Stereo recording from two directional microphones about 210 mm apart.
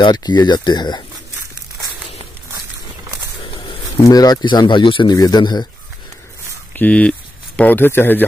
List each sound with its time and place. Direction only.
0.0 s speech: 20° left (ahead or behind)
3.6 s speech: 15° left (ahead or behind)
6.7 s speech: 5° left (ahead or behind)